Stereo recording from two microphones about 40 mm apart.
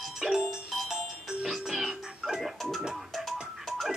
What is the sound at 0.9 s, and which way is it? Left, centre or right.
Music, centre.